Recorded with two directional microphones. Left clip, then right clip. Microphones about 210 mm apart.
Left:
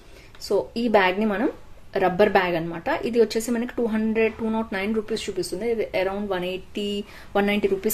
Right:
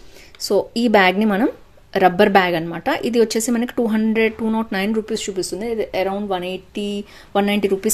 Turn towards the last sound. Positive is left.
turn(degrees=-25)  # may be behind; listen again after turning